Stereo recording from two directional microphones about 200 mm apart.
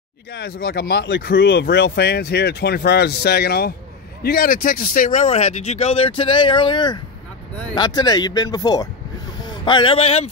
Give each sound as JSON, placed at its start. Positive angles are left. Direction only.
{"t": 0.3, "sound": "speech", "side_deg": 55}